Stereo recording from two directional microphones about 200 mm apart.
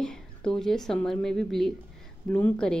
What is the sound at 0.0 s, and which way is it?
A woman's voice, 5° left (ahead or behind).